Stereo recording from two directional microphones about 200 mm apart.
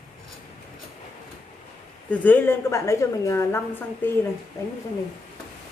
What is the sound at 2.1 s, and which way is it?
A woman's voice, 10° left (ahead or behind).